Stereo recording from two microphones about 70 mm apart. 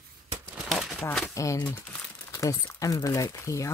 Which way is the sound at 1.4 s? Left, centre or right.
Left.